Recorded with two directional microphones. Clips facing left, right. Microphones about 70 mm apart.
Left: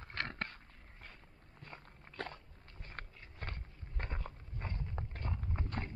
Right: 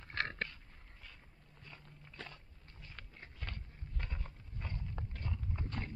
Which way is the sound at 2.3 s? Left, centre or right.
Left.